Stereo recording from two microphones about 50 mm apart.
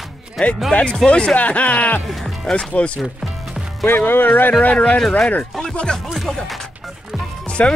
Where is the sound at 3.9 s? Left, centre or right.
Left.